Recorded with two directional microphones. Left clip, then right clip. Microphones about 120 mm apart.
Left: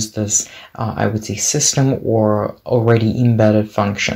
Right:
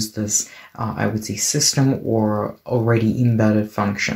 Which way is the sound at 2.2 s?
15° left (ahead or behind).